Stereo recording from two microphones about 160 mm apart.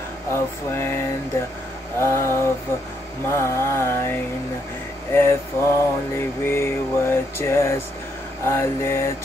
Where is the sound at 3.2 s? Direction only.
15° left (ahead or behind).